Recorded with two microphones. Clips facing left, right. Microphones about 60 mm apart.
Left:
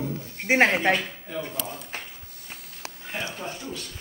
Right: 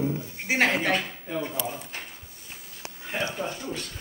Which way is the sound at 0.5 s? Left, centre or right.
Left.